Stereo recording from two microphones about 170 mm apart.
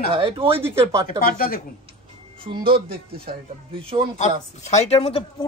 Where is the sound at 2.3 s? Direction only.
30° right (ahead or behind).